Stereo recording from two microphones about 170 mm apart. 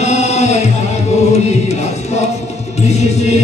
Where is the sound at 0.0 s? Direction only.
40° left (ahead or behind).